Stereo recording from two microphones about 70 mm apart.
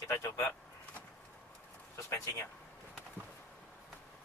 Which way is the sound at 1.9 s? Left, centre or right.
Left.